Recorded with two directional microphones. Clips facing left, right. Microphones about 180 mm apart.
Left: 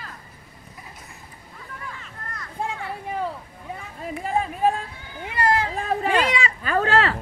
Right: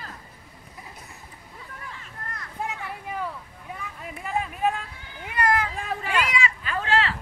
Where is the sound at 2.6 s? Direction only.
30° left (ahead or behind).